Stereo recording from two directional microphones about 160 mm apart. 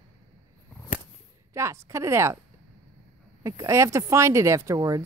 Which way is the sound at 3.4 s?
20° right (ahead or behind).